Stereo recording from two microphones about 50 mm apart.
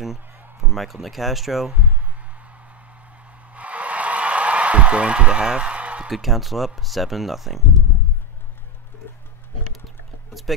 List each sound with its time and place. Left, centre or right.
0.6 s speech: centre
3.5 s a sound: right
6.0 s speech: centre